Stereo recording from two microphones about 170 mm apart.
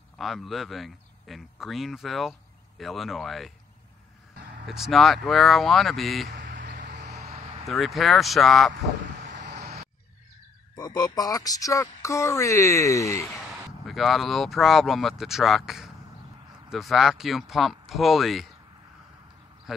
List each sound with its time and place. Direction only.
0.2 s a man's voice: centre (ahead or behind)
4.6 s a man's voice: centre (ahead or behind)
6.4 s a sound: 55° right (ahead or behind)
6.7 s a sound: 80° right
7.0 s a sound: 40° right (ahead or behind)
7.6 s a man's voice: centre (ahead or behind)
9.2 s vehicle: 90° right
10.8 s speech: 25° left (ahead or behind)
13.8 s a man's voice: centre (ahead or behind)